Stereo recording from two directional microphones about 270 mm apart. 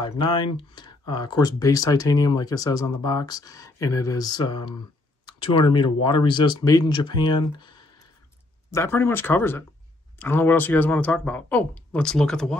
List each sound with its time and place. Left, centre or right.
0.0 s speech: centre